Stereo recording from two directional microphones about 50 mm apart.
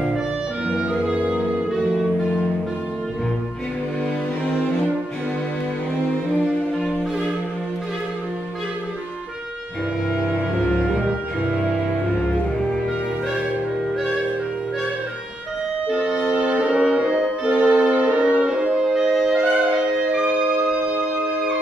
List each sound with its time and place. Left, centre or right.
15.9 s brass instrument: right
19.4 s music: right